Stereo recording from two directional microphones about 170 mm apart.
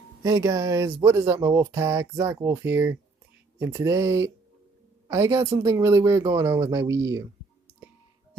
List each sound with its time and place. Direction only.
0.2 s speech: 20° right (ahead or behind)